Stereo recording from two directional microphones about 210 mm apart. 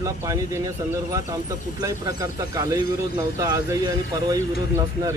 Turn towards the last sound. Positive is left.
turn(degrees=-15)  # may be behind; listen again after turning